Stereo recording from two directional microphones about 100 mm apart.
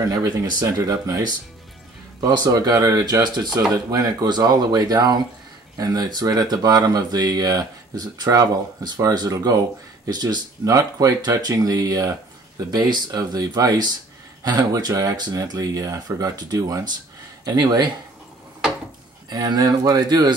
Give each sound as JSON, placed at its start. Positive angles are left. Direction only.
{"t": 0.0, "sound": "speech", "side_deg": -40}
{"t": 2.2, "sound": "speech", "side_deg": -45}
{"t": 19.2, "sound": "speech", "side_deg": -45}